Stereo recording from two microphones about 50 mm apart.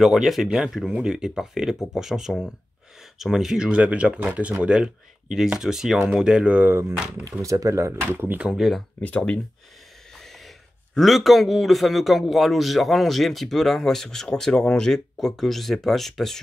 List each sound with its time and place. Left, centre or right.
0.0 s a man's voice: centre
6.7 s speech: right
7.4 s speech: right
8.5 s a man's voice: centre
9.0 s speech: left
10.2 s a sound: centre
11.0 s a man's voice: centre